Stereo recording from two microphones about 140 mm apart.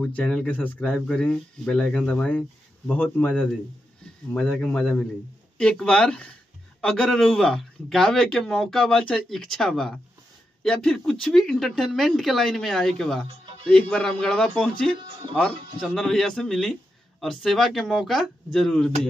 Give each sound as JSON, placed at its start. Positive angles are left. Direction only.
{"t": 0.0, "sound": "speech", "side_deg": 10}
{"t": 13.3, "sound": "music", "side_deg": -40}
{"t": 13.7, "sound": "speech", "side_deg": 5}
{"t": 15.0, "sound": "speech", "side_deg": -40}
{"t": 15.3, "sound": "speech", "side_deg": 5}